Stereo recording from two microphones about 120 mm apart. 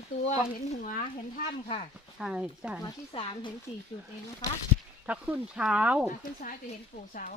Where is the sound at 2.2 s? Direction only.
5° right (ahead or behind).